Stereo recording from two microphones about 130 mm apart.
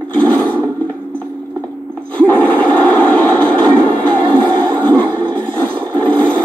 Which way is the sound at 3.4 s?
40° right (ahead or behind).